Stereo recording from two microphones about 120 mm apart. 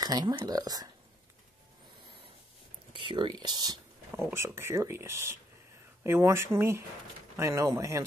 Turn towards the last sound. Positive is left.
turn(degrees=-25)  # may be behind; listen again after turning